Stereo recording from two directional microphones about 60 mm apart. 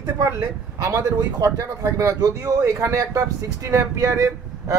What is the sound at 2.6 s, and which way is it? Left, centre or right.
Speech, right.